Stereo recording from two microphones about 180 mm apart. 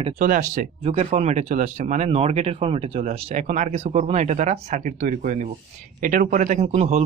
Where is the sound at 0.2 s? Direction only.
45° right (ahead or behind).